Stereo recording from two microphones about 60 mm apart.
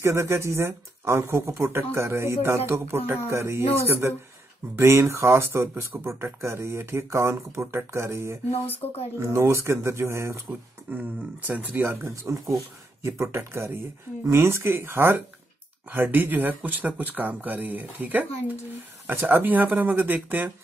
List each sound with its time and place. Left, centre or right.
0.0 s speech: right
10.9 s speech: right
11.8 s speech: right
12.2 s speech: right
13.0 s speech: right